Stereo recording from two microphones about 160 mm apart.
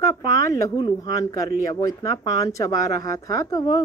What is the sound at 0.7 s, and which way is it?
A woman's voice, 25° left (ahead or behind).